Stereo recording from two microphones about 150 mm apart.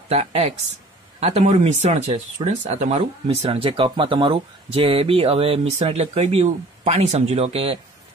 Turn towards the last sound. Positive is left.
turn(degrees=-40)  # may be behind; listen again after turning